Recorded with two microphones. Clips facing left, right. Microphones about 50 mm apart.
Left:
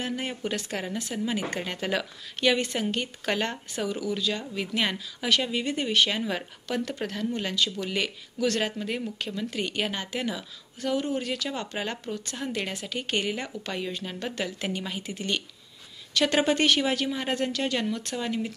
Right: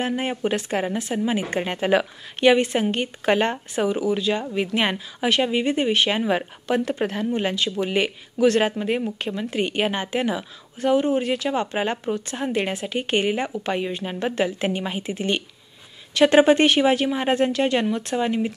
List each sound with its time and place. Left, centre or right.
0.0 s speech: right